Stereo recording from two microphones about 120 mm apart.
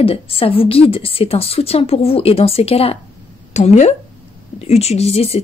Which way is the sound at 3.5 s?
75° left (ahead or behind).